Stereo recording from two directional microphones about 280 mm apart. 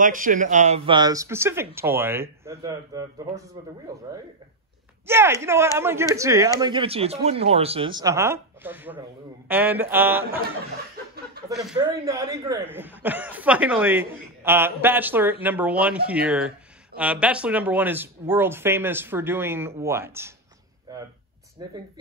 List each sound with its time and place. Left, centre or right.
0.0 s speech: right; by 10.4 s centre
11.5 s speech: centre